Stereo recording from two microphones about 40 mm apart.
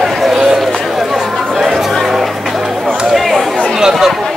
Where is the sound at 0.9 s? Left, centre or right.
Centre.